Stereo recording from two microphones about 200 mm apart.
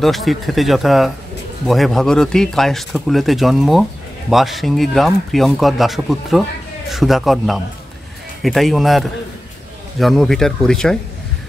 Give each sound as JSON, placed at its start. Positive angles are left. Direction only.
{"t": 0.0, "sound": "speech", "side_deg": 0}